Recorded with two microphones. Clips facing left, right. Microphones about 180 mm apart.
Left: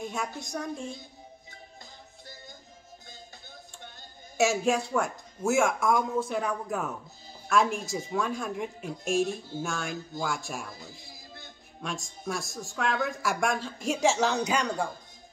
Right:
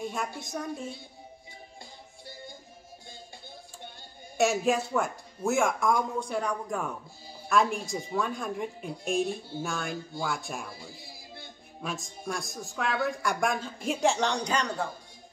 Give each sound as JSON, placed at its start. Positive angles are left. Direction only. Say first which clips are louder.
{"t": 0.0, "sound": "a woman's voice", "louder": "even", "side_deg": 0}
{"t": 4.4, "sound": "a woman's voice", "louder": "even", "side_deg": 0}